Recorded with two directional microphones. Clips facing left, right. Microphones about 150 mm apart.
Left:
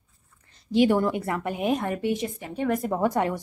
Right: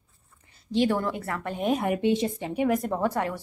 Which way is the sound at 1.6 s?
Centre (ahead or behind).